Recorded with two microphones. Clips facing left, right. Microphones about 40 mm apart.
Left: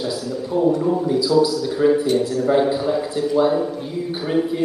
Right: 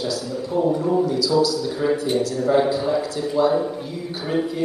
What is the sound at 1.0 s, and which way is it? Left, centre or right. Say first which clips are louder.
Speech: left 2 dB; centre.